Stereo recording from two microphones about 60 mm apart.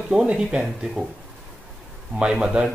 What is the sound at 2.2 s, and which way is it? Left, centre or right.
Speech, centre.